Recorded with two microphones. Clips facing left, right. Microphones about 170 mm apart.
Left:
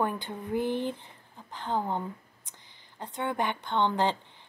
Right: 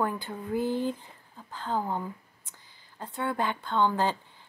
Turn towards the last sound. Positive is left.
turn(degrees=20)  # may be behind; listen again after turning